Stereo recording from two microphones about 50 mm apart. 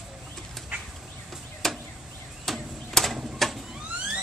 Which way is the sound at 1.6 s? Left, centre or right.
Centre.